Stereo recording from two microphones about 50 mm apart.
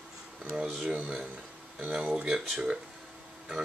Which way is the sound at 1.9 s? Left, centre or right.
Centre.